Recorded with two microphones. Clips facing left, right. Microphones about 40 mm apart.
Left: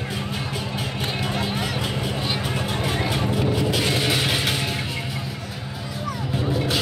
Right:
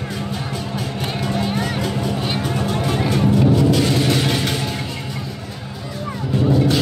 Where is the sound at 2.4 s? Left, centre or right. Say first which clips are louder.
Right 4 dB; centre.